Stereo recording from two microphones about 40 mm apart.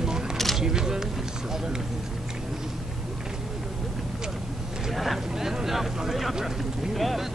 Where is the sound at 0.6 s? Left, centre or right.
Centre.